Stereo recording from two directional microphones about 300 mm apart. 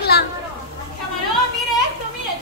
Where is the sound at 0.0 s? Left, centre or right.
Left.